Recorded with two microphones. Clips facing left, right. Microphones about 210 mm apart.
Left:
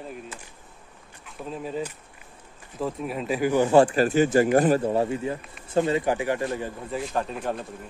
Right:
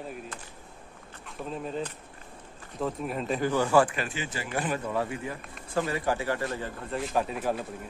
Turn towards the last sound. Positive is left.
turn(degrees=-5)  # may be behind; listen again after turning